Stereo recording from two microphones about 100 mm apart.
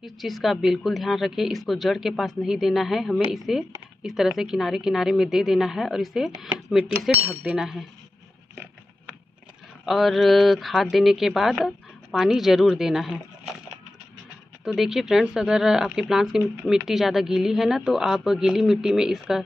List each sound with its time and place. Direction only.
0.0 s speech: centre (ahead or behind)
7.2 s speech: 15° right (ahead or behind)
7.5 s speech: 5° right (ahead or behind)
9.8 s speech: centre (ahead or behind)
14.6 s speech: 5° right (ahead or behind)